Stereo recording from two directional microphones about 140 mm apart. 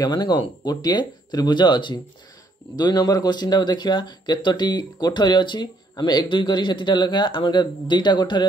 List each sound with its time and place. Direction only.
0.0 s speech: 30° left (ahead or behind)